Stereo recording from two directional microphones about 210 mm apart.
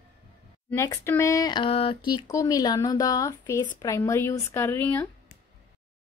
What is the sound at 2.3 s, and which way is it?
A woman's voice, 15° left (ahead or behind).